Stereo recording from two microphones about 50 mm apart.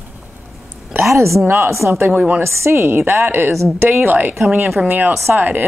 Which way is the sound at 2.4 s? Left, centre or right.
Right.